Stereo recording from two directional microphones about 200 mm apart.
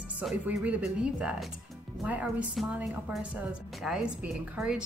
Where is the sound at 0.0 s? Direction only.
5° right (ahead or behind).